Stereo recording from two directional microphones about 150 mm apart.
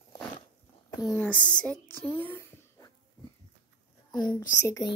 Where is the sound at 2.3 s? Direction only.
15° left (ahead or behind).